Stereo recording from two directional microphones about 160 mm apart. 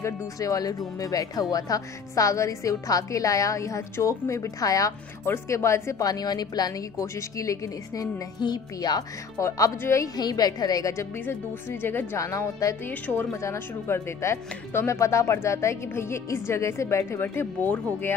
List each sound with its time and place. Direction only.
0.0 s speech: 20° left (ahead or behind)